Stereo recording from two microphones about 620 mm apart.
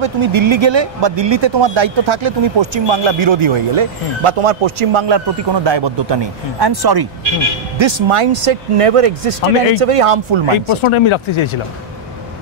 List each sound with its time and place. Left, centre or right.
0.0 s speech: right
7.8 s speech: right
10.8 s speech: left